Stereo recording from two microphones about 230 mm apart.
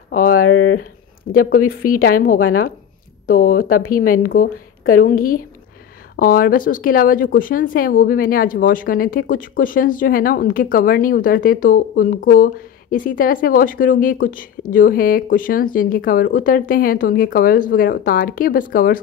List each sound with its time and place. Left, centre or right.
0.3 s speech: left
1.3 s speech: left